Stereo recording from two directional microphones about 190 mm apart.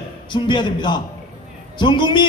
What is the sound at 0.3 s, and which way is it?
A man's voice, 25° left (ahead or behind).